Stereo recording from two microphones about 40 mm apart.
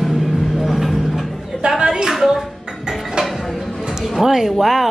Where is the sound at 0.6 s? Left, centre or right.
Centre.